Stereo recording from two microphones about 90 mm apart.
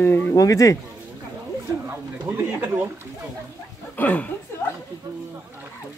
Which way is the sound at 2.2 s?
25° right (ahead or behind).